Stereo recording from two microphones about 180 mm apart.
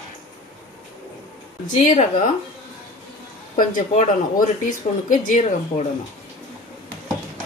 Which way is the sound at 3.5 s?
50° left (ahead or behind).